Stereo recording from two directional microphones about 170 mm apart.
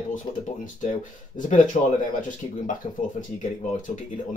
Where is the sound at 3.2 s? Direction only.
45° left (ahead or behind).